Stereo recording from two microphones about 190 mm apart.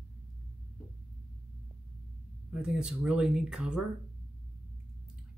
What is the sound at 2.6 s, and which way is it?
Speech, 5° right (ahead or behind).